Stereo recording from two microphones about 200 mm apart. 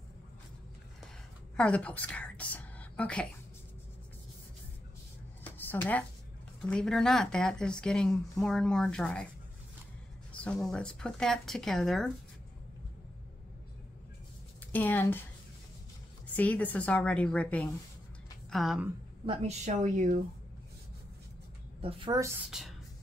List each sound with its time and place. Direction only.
1.6 s a woman's voice: 5° left (ahead or behind)
5.4 s a sound: 10° left (ahead or behind)
6.6 s speech: 5° left (ahead or behind)
10.3 s speech: 5° left (ahead or behind)
14.7 s a woman's voice: 10° left (ahead or behind)
16.3 s a woman's voice: 5° left (ahead or behind)
19.2 s a woman's voice: 30° right (ahead or behind)
21.8 s a woman's voice: 20° right (ahead or behind)
22.5 s speech: centre (ahead or behind)